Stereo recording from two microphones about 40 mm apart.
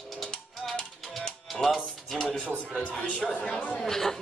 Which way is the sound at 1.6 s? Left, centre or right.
Centre.